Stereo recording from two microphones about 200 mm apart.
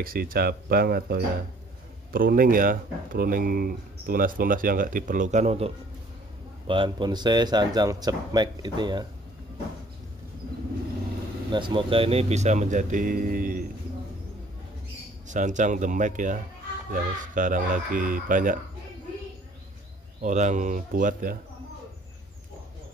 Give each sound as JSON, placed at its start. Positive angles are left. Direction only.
{"t": 0.0, "sound": "speech", "side_deg": -45}
{"t": 6.7, "sound": "speech", "side_deg": -25}
{"t": 11.5, "sound": "speech", "side_deg": -25}
{"t": 15.2, "sound": "speech", "side_deg": -40}
{"t": 20.2, "sound": "speech", "side_deg": -40}